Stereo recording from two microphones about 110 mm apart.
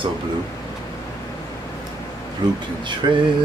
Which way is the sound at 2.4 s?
40° right (ahead or behind).